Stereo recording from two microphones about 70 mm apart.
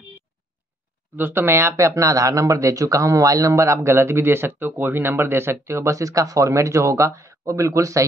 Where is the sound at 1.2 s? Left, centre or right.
Right.